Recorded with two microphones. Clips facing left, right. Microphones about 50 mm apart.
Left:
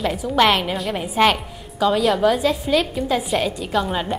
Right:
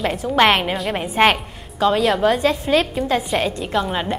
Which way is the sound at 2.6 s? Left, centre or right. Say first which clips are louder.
Right 2 dB; right.